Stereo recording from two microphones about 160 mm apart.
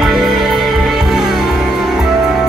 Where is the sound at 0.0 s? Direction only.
Centre (ahead or behind).